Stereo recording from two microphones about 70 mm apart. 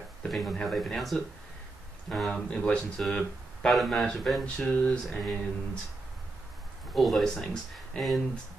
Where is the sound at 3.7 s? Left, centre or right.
Centre.